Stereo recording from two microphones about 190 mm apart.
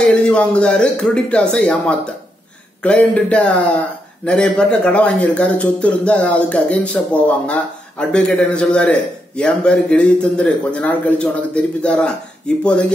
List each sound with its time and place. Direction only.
0.1 s a man's voice: 5° left (ahead or behind)